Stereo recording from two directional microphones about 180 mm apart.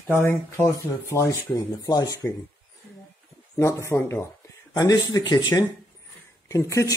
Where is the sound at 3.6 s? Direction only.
15° left (ahead or behind).